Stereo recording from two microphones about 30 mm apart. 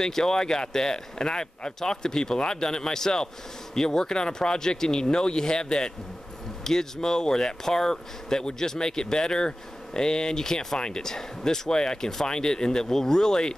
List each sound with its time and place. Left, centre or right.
0.0 s speech: centre